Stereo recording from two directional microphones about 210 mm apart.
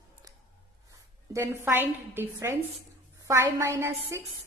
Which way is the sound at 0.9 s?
15° right (ahead or behind).